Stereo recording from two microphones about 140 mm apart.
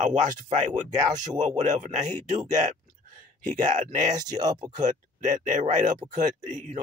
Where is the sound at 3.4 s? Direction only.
65° right (ahead or behind).